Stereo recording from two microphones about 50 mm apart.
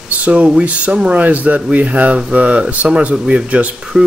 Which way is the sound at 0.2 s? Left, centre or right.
Right.